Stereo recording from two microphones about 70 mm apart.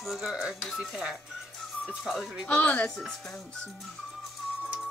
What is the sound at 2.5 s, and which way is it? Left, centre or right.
Speech, centre.